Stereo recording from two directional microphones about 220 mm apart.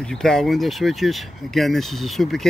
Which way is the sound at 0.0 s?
Centre (ahead or behind).